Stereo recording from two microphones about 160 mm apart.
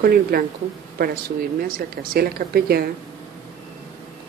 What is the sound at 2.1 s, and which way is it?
Speech, 70° right (ahead or behind).